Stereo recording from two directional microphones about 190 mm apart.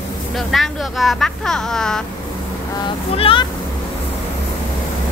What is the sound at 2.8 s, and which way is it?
Speech, 30° left (ahead or behind).